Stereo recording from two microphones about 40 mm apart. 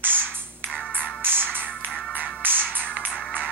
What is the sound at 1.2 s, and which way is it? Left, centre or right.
Music, right.